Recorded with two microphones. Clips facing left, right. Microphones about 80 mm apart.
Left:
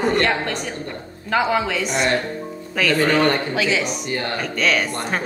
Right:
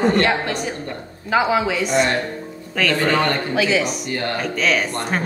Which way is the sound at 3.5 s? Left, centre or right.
Centre.